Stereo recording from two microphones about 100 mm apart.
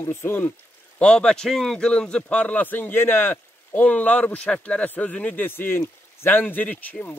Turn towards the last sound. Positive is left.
turn(degrees=15)  # may be behind; listen again after turning